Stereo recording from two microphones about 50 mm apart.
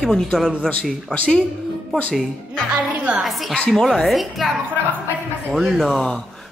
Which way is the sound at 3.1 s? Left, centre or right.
Right.